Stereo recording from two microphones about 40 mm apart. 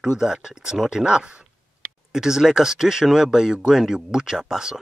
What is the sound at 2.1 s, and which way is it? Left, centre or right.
Speech, centre.